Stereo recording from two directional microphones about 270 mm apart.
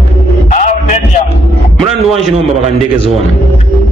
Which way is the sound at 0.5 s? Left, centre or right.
Left.